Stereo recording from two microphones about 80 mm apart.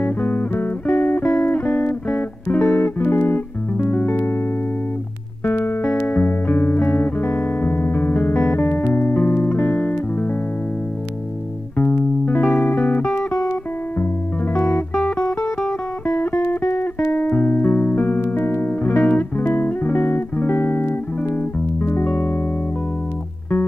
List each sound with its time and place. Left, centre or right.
0.0 s music: left
11.7 s music: left
13.3 s music: left
16.3 s music: left